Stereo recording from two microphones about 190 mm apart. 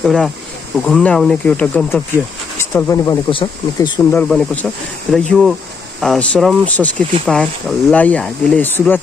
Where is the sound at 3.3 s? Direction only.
25° left (ahead or behind).